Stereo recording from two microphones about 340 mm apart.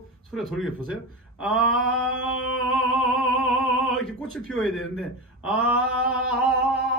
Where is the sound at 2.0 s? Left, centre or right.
Left.